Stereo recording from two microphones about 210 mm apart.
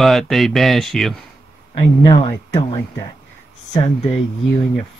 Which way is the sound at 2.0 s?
20° left (ahead or behind).